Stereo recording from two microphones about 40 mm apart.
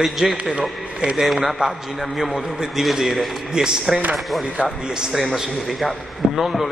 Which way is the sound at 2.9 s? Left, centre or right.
Centre.